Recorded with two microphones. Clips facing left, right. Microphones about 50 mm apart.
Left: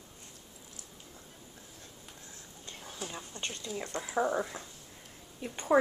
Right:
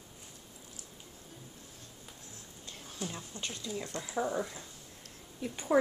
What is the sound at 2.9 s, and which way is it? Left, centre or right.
Speech, centre.